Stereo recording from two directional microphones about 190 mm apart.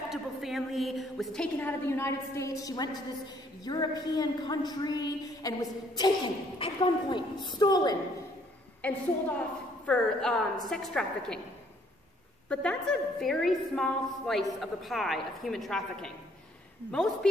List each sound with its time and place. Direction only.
0.1 s a woman's voice: centre (ahead or behind); by 8.0 s 20° left (ahead or behind)
8.8 s a woman's voice: 10° left (ahead or behind)
12.4 s a woman's voice: 5° left (ahead or behind)